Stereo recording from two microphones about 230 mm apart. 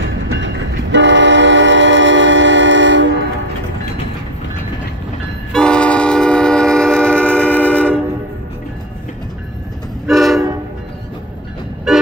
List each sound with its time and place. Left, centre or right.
0.0 s train: right
5.5 s train: centre
10.0 s train: centre
11.9 s vehicle: centre